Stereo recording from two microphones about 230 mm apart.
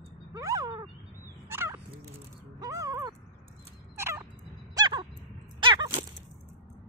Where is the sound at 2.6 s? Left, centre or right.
Centre.